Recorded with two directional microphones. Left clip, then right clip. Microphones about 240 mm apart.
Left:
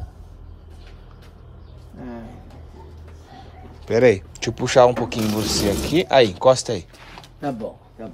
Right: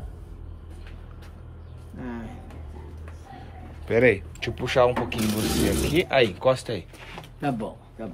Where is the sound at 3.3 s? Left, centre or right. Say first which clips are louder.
Left 2 dB; left.